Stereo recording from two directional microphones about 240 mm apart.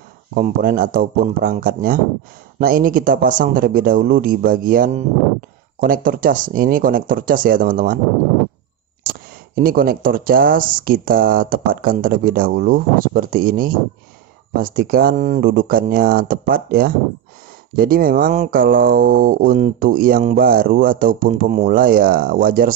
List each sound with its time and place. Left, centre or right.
0.3 s speech: right
9.6 s speech: right